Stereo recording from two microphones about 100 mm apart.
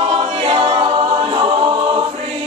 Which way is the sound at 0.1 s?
60° right (ahead or behind).